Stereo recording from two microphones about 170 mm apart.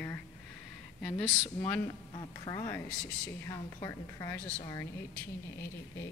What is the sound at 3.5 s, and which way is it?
A woman's voice, 20° left (ahead or behind).